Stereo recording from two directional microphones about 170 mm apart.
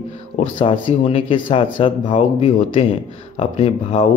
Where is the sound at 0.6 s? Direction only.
30° left (ahead or behind).